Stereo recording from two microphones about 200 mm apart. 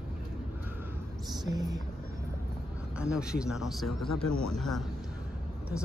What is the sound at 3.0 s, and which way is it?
Speech, 5° right (ahead or behind).